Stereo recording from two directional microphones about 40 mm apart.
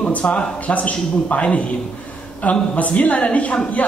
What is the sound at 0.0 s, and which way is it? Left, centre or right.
Speech, left.